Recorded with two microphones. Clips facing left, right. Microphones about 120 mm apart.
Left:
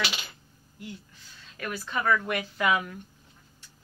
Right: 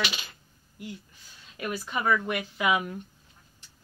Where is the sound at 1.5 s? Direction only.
20° right (ahead or behind).